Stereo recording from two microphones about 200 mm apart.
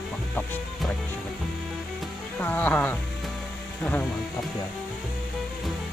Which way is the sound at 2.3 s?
10° left (ahead or behind).